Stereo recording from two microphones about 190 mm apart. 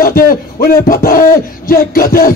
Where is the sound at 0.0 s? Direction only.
50° left (ahead or behind).